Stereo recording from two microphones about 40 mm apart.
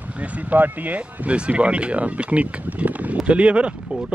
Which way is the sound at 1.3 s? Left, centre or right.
Right.